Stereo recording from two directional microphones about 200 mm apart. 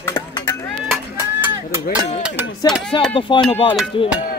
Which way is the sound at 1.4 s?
10° right (ahead or behind).